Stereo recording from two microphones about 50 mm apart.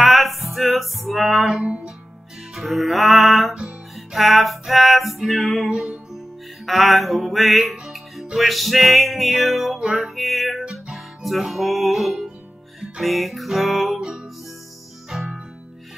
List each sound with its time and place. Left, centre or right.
0.0 s music: centre
1.6 s music: right
2.5 s music: centre
9.8 s music: centre
10.0 s music: centre
13.9 s music: centre